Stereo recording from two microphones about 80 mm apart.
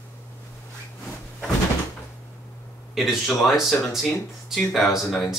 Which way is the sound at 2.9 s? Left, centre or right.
Centre.